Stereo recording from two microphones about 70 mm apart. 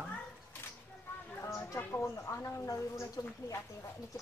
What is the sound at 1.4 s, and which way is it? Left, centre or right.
Speech, left.